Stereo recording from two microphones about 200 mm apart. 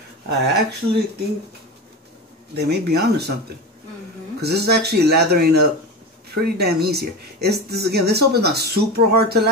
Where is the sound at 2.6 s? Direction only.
55° right (ahead or behind).